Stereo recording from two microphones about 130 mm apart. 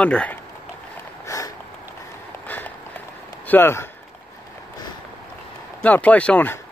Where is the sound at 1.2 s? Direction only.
25° left (ahead or behind).